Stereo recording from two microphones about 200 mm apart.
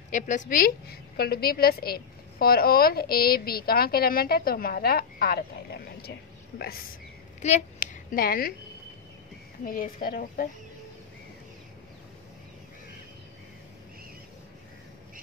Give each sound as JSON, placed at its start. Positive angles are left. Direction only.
{"t": 0.1, "sound": "a woman's voice", "side_deg": 40}
{"t": 7.4, "sound": "speech", "side_deg": 35}
{"t": 9.7, "sound": "a woman's voice", "side_deg": 45}